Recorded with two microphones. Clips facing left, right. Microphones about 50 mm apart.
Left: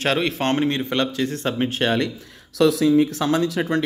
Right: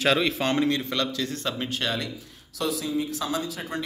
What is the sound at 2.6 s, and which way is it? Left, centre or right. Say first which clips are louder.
Speech: left 11 dB; left.